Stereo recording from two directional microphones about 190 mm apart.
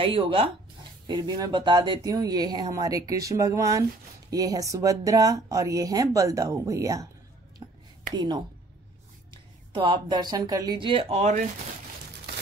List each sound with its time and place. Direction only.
0.0 s speech: 30° right (ahead or behind)
8.1 s speech: 20° right (ahead or behind)